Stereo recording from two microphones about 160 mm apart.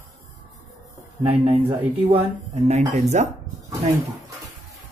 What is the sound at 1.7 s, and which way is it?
Speech, 40° right (ahead or behind).